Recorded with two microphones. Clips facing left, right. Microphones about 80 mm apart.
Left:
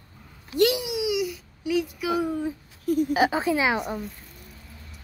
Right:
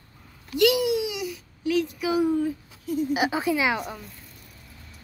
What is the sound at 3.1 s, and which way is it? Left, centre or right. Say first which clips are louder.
Speech: left 2 dB; left.